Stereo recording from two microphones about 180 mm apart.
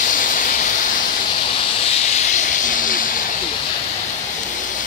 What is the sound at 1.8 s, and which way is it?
Hiss, 35° left (ahead or behind).